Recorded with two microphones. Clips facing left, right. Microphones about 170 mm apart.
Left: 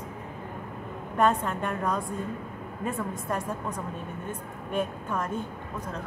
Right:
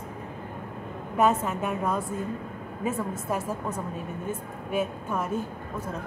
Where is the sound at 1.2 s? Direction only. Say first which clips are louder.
Right 1 dB; 5° right (ahead or behind).